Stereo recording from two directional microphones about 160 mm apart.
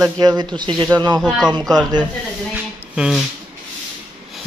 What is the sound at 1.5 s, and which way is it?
Speech, 25° right (ahead or behind).